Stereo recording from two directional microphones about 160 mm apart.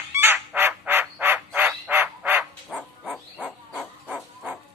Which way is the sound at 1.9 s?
15° right (ahead or behind).